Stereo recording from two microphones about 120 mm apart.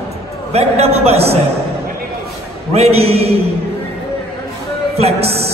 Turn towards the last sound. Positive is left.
turn(degrees=-55)  # may be behind; listen again after turning